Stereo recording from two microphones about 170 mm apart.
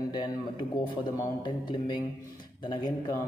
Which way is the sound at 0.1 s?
25° left (ahead or behind).